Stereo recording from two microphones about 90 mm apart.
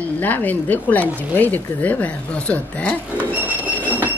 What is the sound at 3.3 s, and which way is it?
Bird, 20° right (ahead or behind).